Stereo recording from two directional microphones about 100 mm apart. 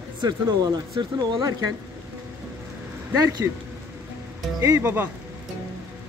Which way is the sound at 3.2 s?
40° right (ahead or behind).